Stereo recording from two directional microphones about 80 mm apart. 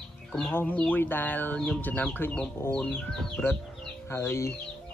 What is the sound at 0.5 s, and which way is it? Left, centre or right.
Speech, left.